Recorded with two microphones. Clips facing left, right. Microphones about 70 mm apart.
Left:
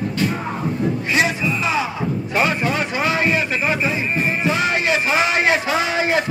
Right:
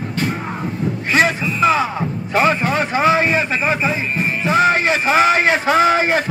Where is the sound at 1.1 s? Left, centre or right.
Right.